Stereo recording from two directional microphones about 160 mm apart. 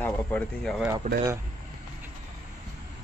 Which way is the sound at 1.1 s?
50° right (ahead or behind).